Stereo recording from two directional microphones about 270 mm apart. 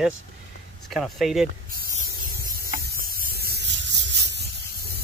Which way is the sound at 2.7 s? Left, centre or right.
Right.